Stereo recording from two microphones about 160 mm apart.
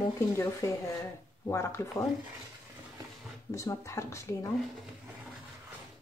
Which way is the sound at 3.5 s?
20° left (ahead or behind).